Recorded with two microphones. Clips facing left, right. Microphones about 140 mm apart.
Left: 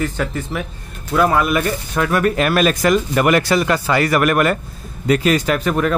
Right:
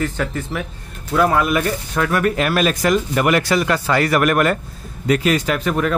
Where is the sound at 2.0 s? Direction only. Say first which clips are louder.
Left 1 dB; 20° left (ahead or behind).